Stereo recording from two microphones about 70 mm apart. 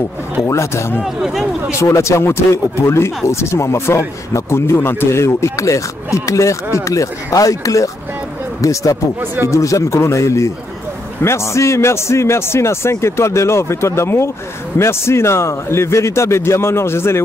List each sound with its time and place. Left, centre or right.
0.5 s speech: left
1.0 s speech: centre
1.8 s a man's voice: left
9.2 s speech: right
9.5 s a man's voice: left